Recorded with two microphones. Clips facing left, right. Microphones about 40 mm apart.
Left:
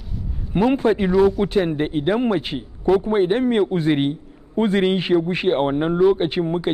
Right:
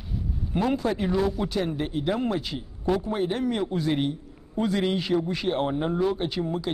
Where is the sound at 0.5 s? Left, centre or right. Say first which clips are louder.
Left 8 dB; left.